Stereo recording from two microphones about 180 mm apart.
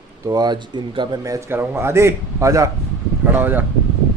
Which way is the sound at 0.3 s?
25° right (ahead or behind).